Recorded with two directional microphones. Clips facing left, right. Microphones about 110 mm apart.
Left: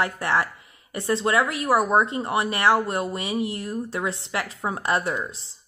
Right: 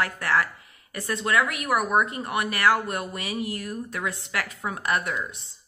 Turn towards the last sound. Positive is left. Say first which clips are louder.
# left 2 dB
turn(degrees=25)  # may be behind; listen again after turning